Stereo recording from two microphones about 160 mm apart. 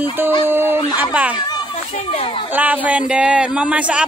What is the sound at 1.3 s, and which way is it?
Children playing, 30° left (ahead or behind).